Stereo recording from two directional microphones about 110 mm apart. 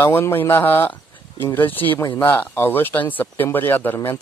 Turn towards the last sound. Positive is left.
turn(degrees=20)  # may be behind; listen again after turning